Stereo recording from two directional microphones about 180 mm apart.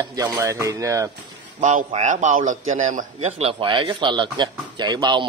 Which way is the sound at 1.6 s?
40° right (ahead or behind).